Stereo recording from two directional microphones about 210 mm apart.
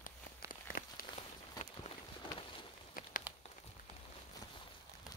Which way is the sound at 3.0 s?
40° left (ahead or behind).